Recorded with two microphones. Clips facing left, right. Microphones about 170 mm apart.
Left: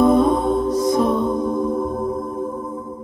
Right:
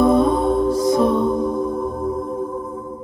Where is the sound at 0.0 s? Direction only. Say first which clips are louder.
Even; 30° right (ahead or behind).